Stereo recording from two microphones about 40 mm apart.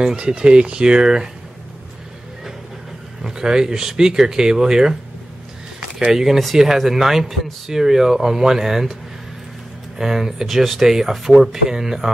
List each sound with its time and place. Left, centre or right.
0.0 s speech: right
3.3 s speech: centre
6.1 s speech: centre
9.9 s speech: centre